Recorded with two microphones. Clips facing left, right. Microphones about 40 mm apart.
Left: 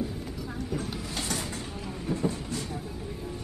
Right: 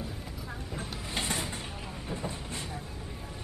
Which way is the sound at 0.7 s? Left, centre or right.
Right.